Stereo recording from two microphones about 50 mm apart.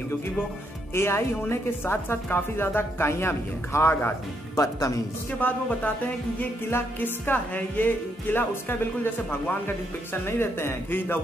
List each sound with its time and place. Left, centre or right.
0.9 s a man's voice: left
4.6 s speech: left
5.4 s speech: left
7.2 s a man's voice: left